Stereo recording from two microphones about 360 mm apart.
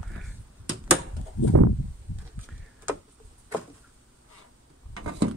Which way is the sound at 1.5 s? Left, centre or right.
Right.